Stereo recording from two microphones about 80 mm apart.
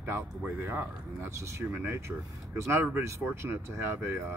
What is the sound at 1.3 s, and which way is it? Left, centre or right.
Speech, right.